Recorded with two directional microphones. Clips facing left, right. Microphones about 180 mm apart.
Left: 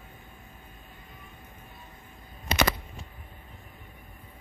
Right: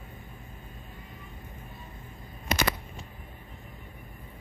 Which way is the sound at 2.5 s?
30° left (ahead or behind).